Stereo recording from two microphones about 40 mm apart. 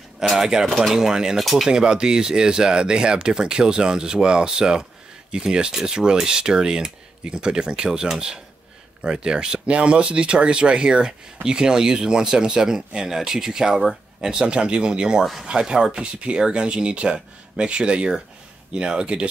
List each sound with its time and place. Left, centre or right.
0.2 s speech: centre
0.7 s speech: centre
0.9 s speech: centre
1.3 s speech: centre
1.7 s speech: centre